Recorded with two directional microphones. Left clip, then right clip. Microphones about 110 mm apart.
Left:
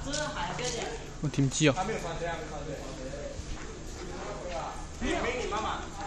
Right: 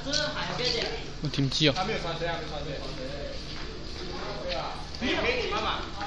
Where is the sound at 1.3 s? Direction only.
45° left (ahead or behind).